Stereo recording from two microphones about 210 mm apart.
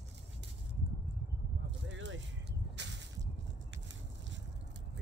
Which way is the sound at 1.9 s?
60° right (ahead or behind).